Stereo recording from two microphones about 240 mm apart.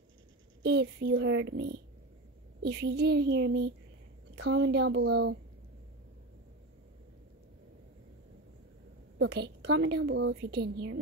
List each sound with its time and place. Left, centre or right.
0.7 s speech: right
9.2 s speech: right